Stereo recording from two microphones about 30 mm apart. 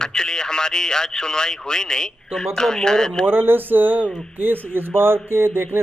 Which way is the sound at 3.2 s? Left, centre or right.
Right.